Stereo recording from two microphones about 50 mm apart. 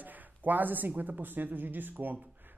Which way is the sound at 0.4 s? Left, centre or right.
Right.